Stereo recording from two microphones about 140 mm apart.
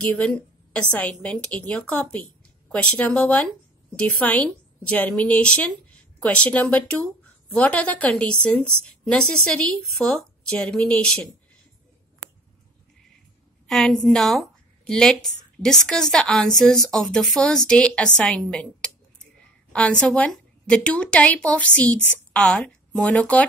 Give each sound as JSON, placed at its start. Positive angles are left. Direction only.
{"t": 0.0, "sound": "a woman's voice", "side_deg": 10}
{"t": 13.7, "sound": "a woman's voice", "side_deg": 0}